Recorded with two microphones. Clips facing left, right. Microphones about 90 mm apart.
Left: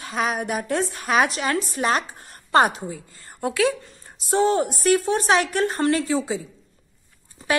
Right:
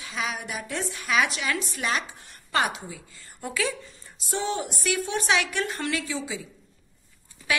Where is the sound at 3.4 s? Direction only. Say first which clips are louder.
Left 8 dB; 55° left (ahead or behind).